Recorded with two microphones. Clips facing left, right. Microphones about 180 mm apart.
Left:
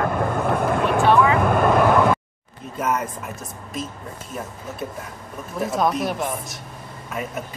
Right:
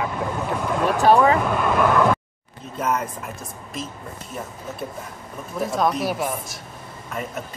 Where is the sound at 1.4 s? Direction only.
50° left (ahead or behind).